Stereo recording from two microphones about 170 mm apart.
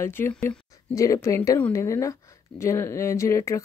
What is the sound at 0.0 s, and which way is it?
Speech, 15° left (ahead or behind).